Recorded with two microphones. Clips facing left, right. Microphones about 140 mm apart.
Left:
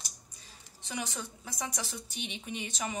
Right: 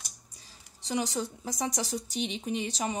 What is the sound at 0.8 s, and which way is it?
Speech, 35° right (ahead or behind).